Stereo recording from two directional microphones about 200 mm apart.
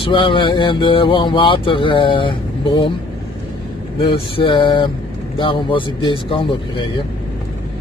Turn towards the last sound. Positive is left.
turn(degrees=25)  # may be behind; listen again after turning